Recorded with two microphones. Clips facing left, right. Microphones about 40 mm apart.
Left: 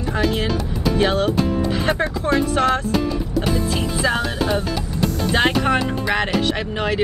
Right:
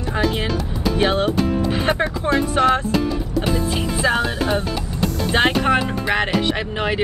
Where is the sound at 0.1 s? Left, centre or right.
Centre.